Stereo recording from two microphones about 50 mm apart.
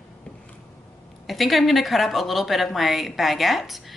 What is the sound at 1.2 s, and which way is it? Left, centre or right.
Speech, centre.